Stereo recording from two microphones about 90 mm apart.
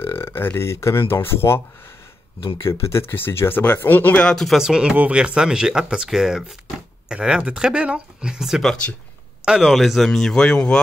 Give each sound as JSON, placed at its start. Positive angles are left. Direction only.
{"t": 0.0, "sound": "speech", "side_deg": 25}
{"t": 2.6, "sound": "speech", "side_deg": 30}
{"t": 4.6, "sound": "speech", "side_deg": -5}